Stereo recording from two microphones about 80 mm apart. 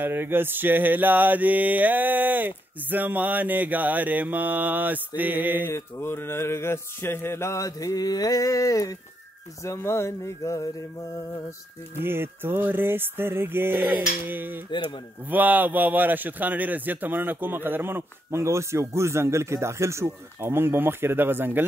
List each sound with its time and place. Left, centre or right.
0.0 s a man's voice: right
5.7 s mantra: left
9.6 s mantra: left
12.0 s a man's voice: right